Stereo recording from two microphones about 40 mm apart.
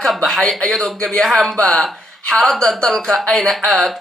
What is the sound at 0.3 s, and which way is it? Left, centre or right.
Speech, centre.